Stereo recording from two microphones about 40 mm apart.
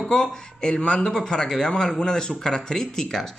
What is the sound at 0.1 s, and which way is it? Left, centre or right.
Speech, left.